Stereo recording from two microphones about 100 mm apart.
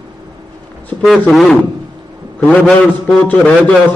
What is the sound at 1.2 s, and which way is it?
Speech, 5° left (ahead or behind).